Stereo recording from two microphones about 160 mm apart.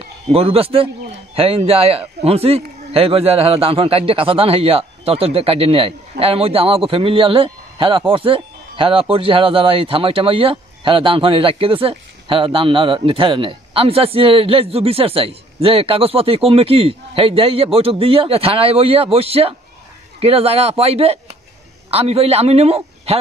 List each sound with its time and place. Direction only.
0.3 s speech: 40° right (ahead or behind)